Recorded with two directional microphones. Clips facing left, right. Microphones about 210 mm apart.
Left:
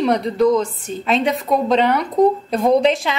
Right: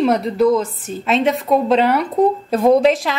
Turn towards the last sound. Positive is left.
turn(degrees=0)  # may be behind; listen again after turning